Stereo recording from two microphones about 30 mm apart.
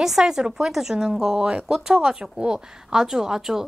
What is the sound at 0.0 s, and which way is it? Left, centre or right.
A woman's voice, centre.